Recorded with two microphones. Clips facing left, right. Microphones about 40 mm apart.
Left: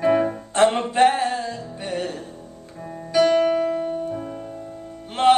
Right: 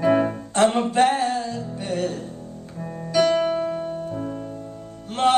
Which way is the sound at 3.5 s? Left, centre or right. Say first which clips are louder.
Left 3 dB; left.